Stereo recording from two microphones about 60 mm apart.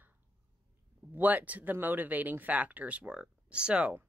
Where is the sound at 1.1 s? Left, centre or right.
Right.